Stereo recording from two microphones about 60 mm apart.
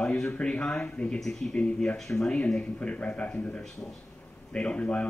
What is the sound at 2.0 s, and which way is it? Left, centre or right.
A man's voice, centre.